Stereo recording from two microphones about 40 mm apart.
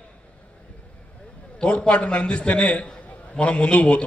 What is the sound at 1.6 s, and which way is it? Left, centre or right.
A man's voice, left.